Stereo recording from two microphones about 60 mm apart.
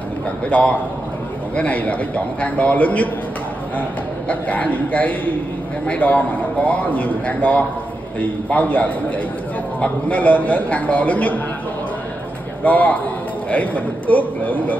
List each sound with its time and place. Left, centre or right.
0.5 s a man's voice: left
4.3 s a man's voice: left
10.0 s a man's voice: left
12.6 s a man's voice: left